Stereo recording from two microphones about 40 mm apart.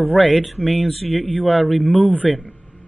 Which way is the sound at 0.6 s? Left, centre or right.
Centre.